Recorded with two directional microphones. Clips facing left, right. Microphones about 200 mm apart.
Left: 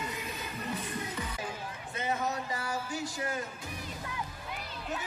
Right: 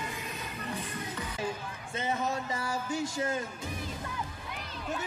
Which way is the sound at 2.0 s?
25° right (ahead or behind).